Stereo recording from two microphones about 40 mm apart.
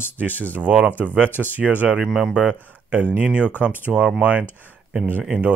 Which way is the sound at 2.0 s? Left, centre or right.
Centre.